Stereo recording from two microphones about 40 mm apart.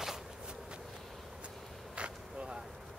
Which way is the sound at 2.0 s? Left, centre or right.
Right.